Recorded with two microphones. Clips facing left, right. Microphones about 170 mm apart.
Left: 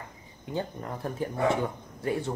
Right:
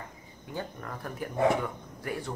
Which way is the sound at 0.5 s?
25° left (ahead or behind).